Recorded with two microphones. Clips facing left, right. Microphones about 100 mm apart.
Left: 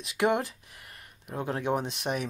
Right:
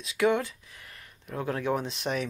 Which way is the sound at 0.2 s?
25° left (ahead or behind).